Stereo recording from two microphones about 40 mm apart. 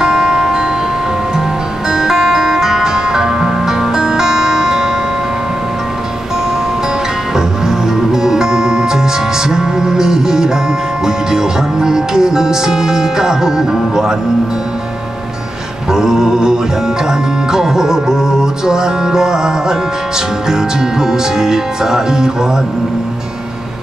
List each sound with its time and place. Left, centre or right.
0.0 s music: centre
1.9 s music: centre
7.3 s music: centre
15.9 s music: centre